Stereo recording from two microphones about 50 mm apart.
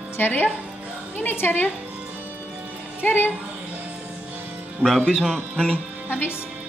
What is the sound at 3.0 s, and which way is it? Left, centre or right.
Speech, left.